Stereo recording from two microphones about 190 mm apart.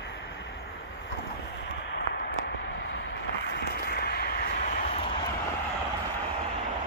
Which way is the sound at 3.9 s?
55° left (ahead or behind).